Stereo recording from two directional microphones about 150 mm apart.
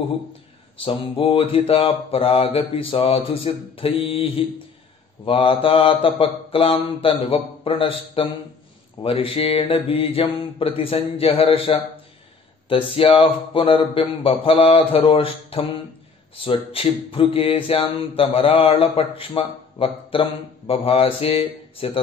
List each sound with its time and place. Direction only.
0.8 s speech: 35° left (ahead or behind)